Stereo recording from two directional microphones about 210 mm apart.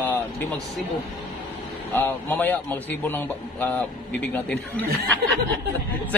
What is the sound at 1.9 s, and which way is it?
A man's voice, 10° left (ahead or behind).